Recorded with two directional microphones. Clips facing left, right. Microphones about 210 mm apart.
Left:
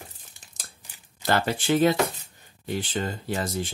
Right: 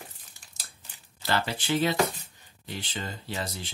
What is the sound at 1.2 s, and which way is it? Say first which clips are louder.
Speech: left 5 dB; 50° left (ahead or behind).